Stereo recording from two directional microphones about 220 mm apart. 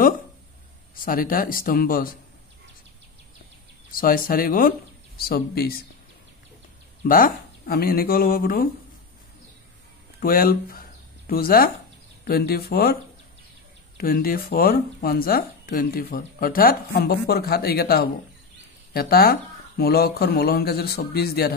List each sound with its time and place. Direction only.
0.9 s speech: 40° left (ahead or behind)
3.9 s speech: 40° left (ahead or behind)
7.1 s speech: 40° left (ahead or behind)
10.2 s speech: 40° left (ahead or behind)
13.9 s speech: 40° left (ahead or behind)